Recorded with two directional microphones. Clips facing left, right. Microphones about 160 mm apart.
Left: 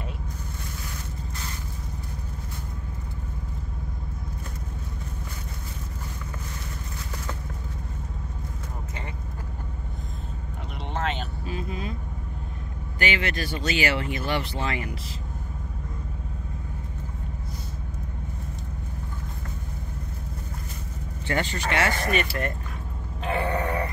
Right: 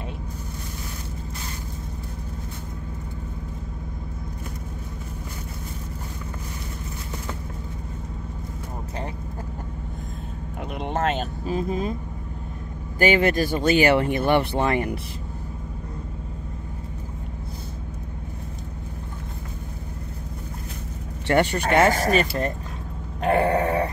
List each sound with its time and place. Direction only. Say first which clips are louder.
10.8 s vehicle: right 5 dB; 45° right (ahead or behind)
13.0 s speech: right 9 dB; 45° right (ahead or behind)
21.3 s speech: right 8 dB; 65° right (ahead or behind)
21.6 s speech: right 5 dB; 45° right (ahead or behind)
23.2 s grunt: right 7 dB; 50° right (ahead or behind)